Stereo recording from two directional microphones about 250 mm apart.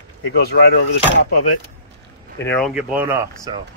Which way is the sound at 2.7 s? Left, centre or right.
Centre.